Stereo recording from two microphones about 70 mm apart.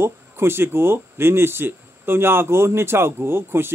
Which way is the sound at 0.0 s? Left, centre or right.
Right.